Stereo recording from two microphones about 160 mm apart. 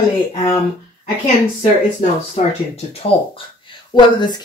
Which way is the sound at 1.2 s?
45° left (ahead or behind).